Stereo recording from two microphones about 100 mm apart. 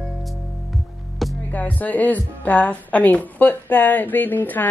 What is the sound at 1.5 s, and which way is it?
A woman's voice, 15° left (ahead or behind).